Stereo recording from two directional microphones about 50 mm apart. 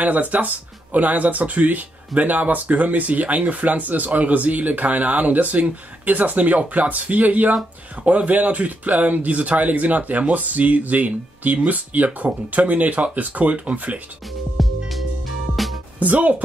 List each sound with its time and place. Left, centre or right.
0.0 s speech: right
14.6 s music: centre
16.0 s speech: right